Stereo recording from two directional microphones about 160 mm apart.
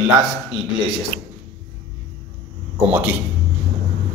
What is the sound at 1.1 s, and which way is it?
Speech, 90° right.